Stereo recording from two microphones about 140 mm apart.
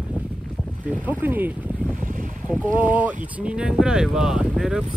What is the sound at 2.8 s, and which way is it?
Speech, 10° right (ahead or behind).